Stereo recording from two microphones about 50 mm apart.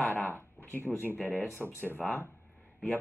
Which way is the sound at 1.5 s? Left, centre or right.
Left.